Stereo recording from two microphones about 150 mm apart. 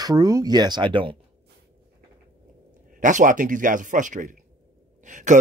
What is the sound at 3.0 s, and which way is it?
Speech, 60° right (ahead or behind).